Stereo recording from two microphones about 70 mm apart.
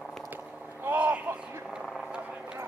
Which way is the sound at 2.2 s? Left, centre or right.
Centre.